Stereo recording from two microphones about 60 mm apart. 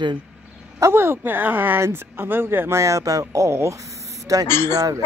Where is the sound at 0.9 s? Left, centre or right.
Right.